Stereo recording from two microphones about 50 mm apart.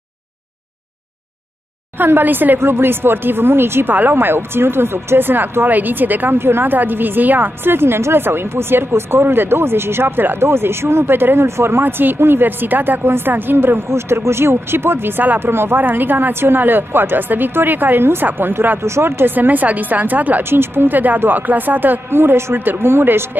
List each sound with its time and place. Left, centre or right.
2.0 s a woman's voice: right
2.6 s a woman's voice: right
6.3 s a woman's voice: right
11.8 s a woman's voice: right
13.8 s a woman's voice: right
15.8 s a woman's voice: right
18.8 s speech: right
19.3 s speech: right
20.4 s a woman's voice: right
22.1 s a woman's voice: right